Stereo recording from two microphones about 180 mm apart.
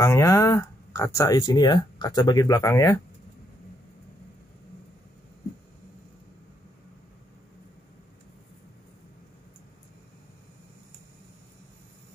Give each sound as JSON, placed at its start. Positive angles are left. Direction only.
{"t": 0.0, "sound": "speech", "side_deg": 15}